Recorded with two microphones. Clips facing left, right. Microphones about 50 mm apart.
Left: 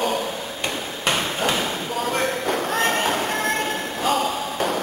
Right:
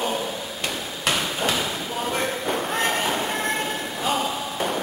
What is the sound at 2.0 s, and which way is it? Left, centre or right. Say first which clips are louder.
Train: left 3 dB; centre.